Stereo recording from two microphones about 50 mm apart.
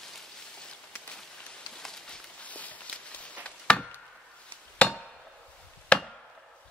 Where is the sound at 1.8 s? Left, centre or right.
Centre.